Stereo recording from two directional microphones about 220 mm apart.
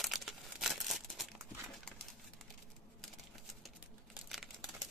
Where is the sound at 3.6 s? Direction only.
Centre (ahead or behind).